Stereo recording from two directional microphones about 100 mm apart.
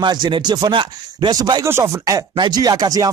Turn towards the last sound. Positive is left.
turn(degrees=-40)  # may be behind; listen again after turning